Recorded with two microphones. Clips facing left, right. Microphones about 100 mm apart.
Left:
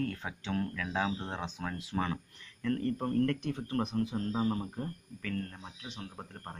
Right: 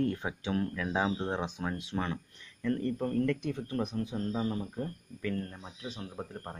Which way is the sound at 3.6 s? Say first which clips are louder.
Left 4 dB; 60° left (ahead or behind).